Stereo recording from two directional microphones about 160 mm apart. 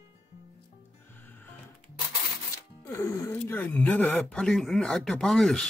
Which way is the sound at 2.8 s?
20° left (ahead or behind).